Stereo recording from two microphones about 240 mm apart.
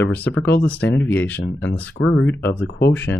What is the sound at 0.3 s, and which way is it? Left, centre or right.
Speech, left.